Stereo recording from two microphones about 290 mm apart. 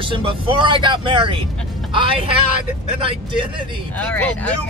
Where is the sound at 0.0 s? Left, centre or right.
Centre.